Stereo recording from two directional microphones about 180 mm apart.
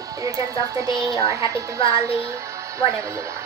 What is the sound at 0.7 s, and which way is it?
Speech, 20° right (ahead or behind).